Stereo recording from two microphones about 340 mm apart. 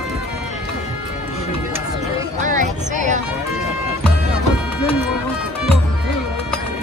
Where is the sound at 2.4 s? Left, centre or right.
Right.